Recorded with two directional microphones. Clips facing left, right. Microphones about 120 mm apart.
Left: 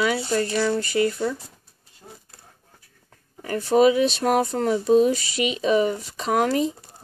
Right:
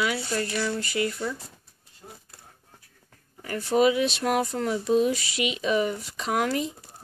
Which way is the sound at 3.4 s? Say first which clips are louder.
Left 4 dB; 30° left (ahead or behind).